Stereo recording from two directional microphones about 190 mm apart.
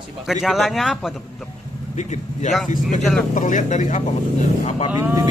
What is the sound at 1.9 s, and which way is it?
Speech, 40° left (ahead or behind).